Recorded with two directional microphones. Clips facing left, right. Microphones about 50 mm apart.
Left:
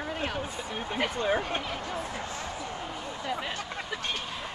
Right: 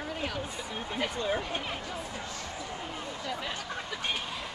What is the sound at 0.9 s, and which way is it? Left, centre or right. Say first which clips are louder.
Speech: left 3 dB; left.